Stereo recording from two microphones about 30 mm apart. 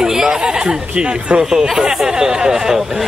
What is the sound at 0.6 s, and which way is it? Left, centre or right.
Speech, right.